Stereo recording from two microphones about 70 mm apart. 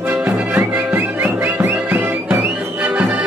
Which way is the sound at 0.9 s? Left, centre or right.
Right.